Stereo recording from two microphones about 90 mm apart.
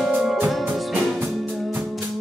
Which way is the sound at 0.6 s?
20° right (ahead or behind).